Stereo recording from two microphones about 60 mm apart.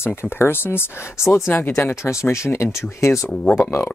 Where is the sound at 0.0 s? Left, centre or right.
Left.